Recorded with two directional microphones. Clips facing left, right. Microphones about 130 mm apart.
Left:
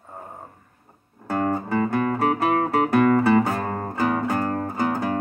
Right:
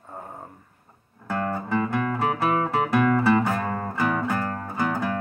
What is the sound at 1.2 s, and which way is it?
Music, 40° left (ahead or behind).